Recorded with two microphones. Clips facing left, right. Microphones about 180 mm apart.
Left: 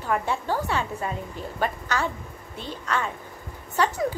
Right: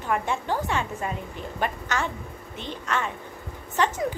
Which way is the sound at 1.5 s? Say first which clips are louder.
Left 1 dB; 35° left (ahead or behind).